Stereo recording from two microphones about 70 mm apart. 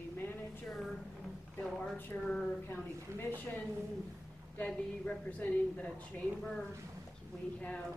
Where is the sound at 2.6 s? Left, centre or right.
Left.